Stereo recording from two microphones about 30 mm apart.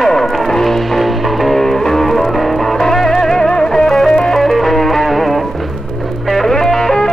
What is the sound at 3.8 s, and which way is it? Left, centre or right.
Music, centre.